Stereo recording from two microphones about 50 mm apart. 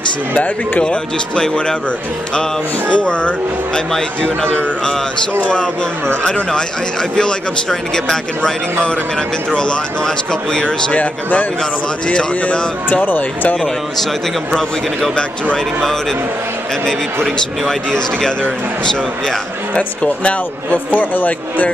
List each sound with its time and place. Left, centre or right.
0.8 s a man's voice: centre
2.9 s speech: left
6.2 s a man's voice: centre
11.0 s speech: left
12.9 s speech: left
15.5 s a man's voice: centre
19.7 s speech: left
20.7 s speech: left